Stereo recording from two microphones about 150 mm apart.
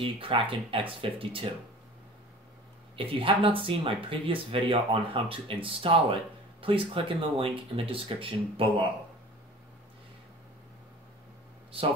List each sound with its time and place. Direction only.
0.0 s speech: 35° right (ahead or behind)
3.0 s speech: 35° right (ahead or behind)